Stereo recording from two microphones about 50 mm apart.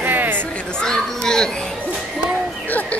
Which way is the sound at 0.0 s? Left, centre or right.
Right.